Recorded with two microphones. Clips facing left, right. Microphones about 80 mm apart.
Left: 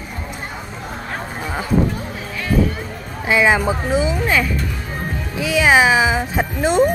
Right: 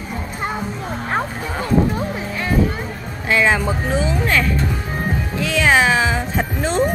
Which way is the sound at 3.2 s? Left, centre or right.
Centre.